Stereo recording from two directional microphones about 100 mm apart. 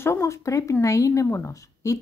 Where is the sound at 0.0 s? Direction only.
30° left (ahead or behind).